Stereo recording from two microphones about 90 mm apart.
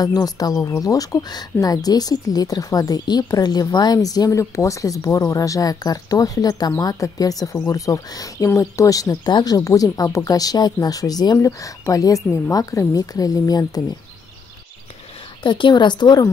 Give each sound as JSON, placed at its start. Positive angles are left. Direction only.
{"t": 0.0, "sound": "speech", "side_deg": 45}
{"t": 15.4, "sound": "a woman's voice", "side_deg": 60}